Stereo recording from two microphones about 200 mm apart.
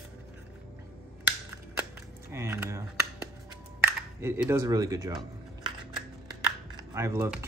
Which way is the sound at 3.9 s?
10° right (ahead or behind).